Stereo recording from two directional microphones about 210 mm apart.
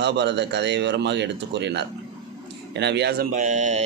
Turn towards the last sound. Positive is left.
turn(degrees=-35)  # may be behind; listen again after turning